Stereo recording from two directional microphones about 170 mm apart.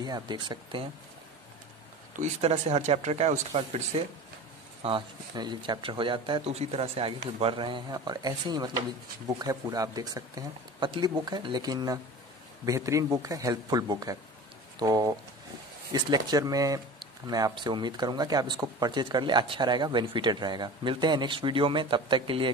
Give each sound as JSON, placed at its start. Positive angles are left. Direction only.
{"t": 0.0, "sound": "speech", "side_deg": -25}
{"t": 2.1, "sound": "speech", "side_deg": -40}